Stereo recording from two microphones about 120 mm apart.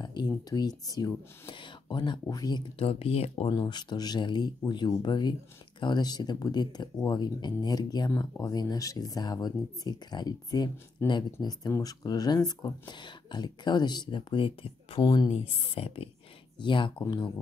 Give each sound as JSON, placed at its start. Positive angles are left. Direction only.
{"t": 0.0, "sound": "speech", "side_deg": 35}
{"t": 1.5, "sound": "speech", "side_deg": 40}
{"t": 2.8, "sound": "speech", "side_deg": 55}
{"t": 3.4, "sound": "speech", "side_deg": 35}
{"t": 11.0, "sound": "speech", "side_deg": 20}